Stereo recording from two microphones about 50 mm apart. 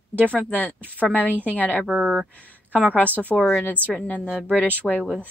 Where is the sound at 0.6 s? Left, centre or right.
Right.